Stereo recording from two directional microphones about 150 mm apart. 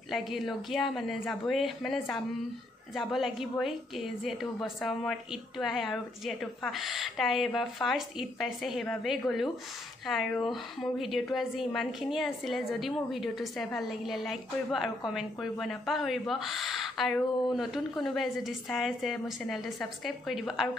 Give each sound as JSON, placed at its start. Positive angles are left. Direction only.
{"t": 0.1, "sound": "a woman's voice", "side_deg": 0}